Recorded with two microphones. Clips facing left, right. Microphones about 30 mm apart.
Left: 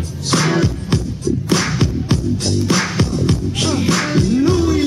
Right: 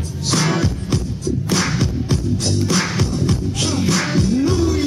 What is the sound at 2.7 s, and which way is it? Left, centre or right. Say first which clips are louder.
Music: left 2 dB; centre.